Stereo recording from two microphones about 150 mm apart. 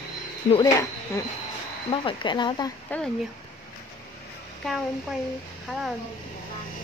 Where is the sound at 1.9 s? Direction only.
30° left (ahead or behind).